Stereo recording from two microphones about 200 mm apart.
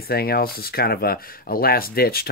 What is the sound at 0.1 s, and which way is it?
Speech, 50° left (ahead or behind).